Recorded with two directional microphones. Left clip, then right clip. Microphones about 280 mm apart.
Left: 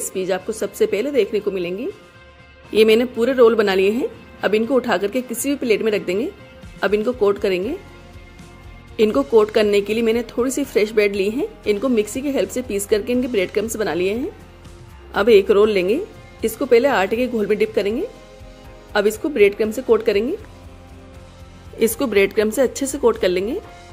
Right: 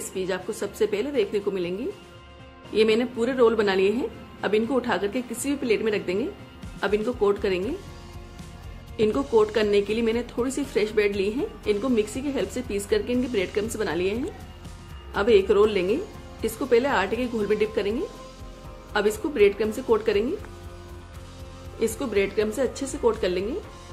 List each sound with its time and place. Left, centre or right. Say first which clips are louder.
0.1 s a woman's voice: left 6 dB; centre
8.9 s a woman's voice: left 6 dB; left
15.1 s a woman's voice: left 6 dB; left
18.9 s a woman's voice: left 5 dB; centre
21.7 s a woman's voice: left 8 dB; left